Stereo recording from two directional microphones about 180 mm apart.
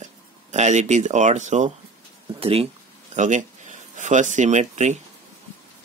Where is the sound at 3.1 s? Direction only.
45° right (ahead or behind).